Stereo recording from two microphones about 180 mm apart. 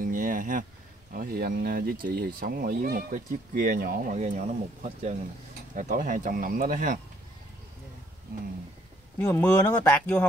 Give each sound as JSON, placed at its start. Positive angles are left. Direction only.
{"t": 0.0, "sound": "a sound", "side_deg": -50}
{"t": 1.1, "sound": "speech", "side_deg": -55}
{"t": 9.2, "sound": "speech", "side_deg": 10}